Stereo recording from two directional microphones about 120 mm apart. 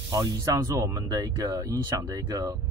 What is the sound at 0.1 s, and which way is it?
Speech, 30° right (ahead or behind).